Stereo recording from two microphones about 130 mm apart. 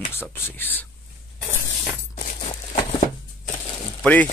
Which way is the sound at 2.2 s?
80° left.